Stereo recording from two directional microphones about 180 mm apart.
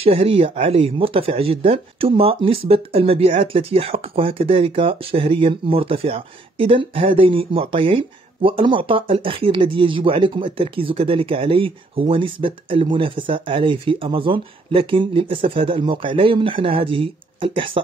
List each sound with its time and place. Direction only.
0.0 s speech: 30° right (ahead or behind)